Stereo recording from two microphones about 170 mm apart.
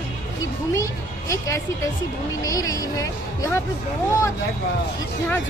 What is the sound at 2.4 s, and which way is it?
A woman's voice, 20° left (ahead or behind).